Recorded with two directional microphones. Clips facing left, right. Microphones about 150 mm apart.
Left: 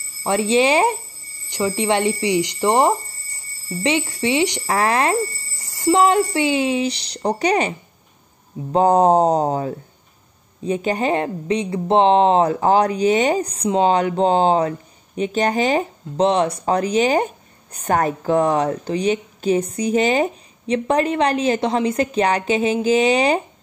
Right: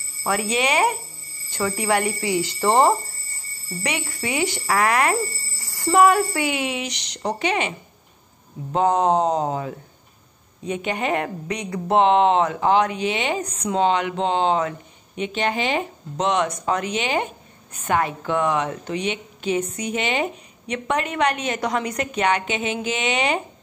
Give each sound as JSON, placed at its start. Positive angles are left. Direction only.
{"t": 0.2, "sound": "speech", "side_deg": 25}
{"t": 8.7, "sound": "speech", "side_deg": 35}